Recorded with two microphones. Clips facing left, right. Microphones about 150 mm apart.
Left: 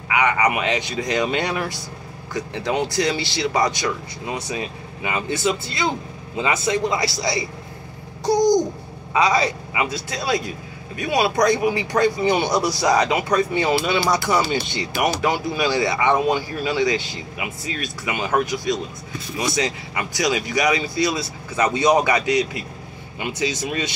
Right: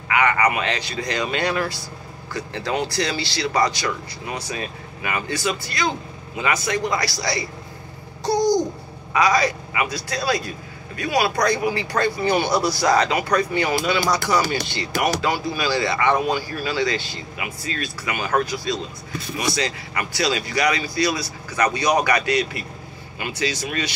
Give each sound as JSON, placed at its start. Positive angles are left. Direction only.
{"t": 0.1, "sound": "speech", "side_deg": 15}
{"t": 8.3, "sound": "babbling", "side_deg": 15}
{"t": 9.1, "sound": "speech", "side_deg": 25}